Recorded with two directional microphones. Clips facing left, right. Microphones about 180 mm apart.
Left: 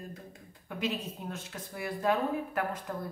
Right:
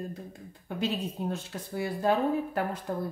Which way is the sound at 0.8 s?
30° right (ahead or behind).